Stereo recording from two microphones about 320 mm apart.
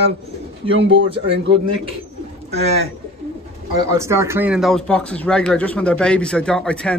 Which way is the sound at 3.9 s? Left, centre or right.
Centre.